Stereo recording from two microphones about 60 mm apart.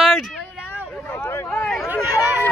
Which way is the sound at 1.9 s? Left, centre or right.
Right.